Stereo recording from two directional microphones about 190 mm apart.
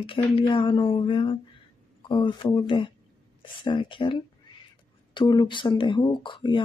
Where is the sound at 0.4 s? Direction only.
25° left (ahead or behind).